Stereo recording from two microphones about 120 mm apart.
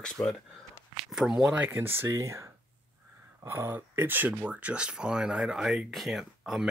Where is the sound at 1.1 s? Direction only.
5° right (ahead or behind).